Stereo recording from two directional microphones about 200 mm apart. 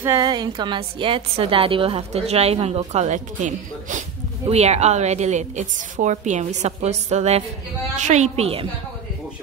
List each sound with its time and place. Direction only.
0.0 s a woman's voice: 15° right (ahead or behind)